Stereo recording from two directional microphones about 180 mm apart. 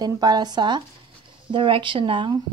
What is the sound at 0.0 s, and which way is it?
Speech, 20° right (ahead or behind).